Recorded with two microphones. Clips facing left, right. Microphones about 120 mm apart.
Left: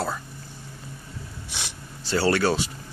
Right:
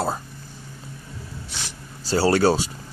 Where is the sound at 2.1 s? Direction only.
30° right (ahead or behind).